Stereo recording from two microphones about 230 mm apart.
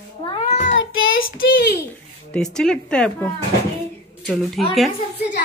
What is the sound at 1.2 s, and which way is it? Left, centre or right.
Speech, left.